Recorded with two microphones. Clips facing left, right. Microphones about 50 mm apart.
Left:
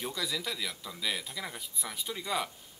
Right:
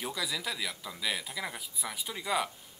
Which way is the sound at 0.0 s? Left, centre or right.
Centre.